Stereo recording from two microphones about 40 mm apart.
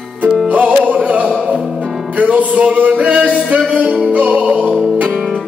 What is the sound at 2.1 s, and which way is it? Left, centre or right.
Music, right.